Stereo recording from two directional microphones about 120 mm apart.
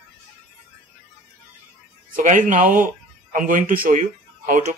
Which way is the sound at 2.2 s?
90° right.